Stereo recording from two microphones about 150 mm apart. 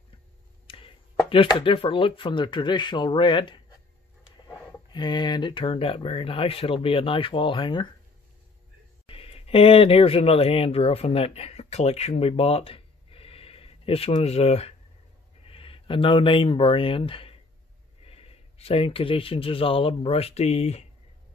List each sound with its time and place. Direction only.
0.7 s speech: 35° left (ahead or behind)
4.9 s speech: 30° left (ahead or behind)
9.0 s speech: 40° left (ahead or behind)